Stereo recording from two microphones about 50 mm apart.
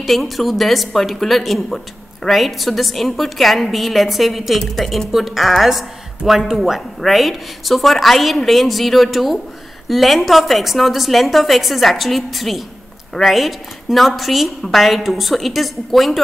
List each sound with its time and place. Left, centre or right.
0.0 s a woman's voice: centre